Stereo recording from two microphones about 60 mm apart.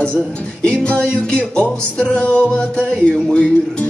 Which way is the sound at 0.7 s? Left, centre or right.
Centre.